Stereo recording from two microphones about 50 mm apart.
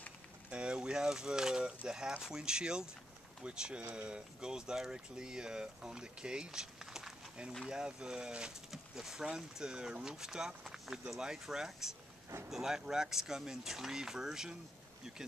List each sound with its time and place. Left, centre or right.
0.5 s speech: right